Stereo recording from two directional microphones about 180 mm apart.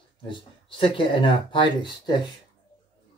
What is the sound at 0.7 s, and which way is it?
Speech, 25° left (ahead or behind).